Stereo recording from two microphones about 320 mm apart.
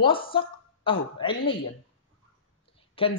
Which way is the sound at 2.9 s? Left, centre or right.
Centre.